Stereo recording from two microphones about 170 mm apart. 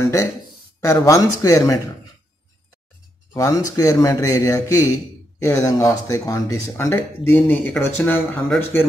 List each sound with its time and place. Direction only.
0.0 s speech: 20° left (ahead or behind)
3.3 s speech: 20° left (ahead or behind)